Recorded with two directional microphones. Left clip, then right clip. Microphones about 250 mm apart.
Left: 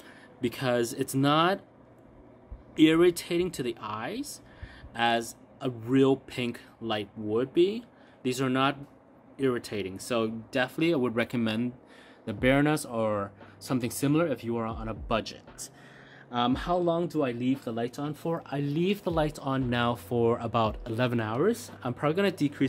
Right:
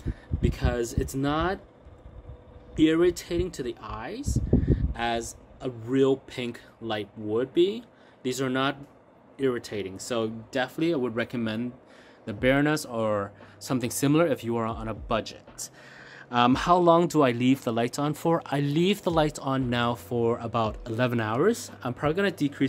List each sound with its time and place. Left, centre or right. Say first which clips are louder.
0.0 s speech: right 1 dB; centre
2.7 s speech: even; centre
16.3 s speech: right 6 dB; right; by 22.7 s centre